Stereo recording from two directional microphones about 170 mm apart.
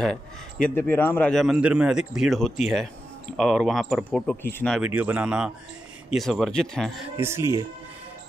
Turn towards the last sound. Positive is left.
turn(degrees=-15)  # may be behind; listen again after turning